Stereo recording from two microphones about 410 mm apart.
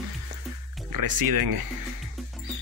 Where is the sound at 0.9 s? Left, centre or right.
Right.